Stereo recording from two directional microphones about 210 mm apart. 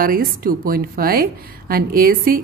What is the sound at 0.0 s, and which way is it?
A woman's voice, 45° right (ahead or behind).